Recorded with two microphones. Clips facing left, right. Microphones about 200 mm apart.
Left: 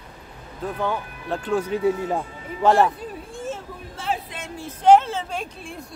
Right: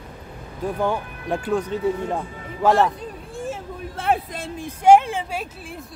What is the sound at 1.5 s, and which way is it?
Speech, 5° left (ahead or behind).